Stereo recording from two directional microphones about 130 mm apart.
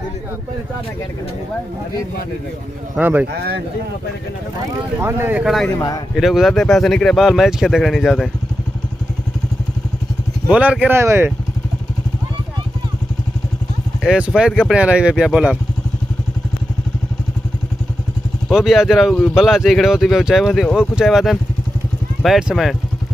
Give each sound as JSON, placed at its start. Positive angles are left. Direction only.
{"t": 3.0, "sound": "speech", "side_deg": -15}
{"t": 5.0, "sound": "speech", "side_deg": -15}
{"t": 5.4, "sound": "speech", "side_deg": 0}
{"t": 10.5, "sound": "speech", "side_deg": -10}
{"t": 14.0, "sound": "speech", "side_deg": -5}
{"t": 18.5, "sound": "speech", "side_deg": 0}